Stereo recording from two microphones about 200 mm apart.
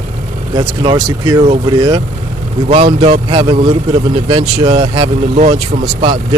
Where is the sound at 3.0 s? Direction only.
30° right (ahead or behind).